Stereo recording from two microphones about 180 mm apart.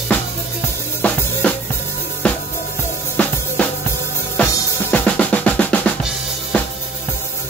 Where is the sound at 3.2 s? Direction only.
10° left (ahead or behind).